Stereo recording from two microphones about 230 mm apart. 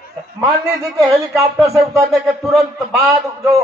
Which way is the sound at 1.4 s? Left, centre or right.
Centre.